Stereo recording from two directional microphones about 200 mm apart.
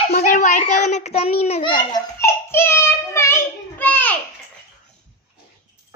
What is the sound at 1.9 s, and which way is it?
Child singing, 10° left (ahead or behind).